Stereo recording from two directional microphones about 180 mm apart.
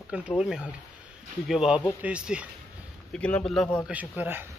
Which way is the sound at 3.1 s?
5° left (ahead or behind).